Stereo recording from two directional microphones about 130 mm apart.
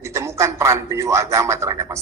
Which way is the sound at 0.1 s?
20° right (ahead or behind).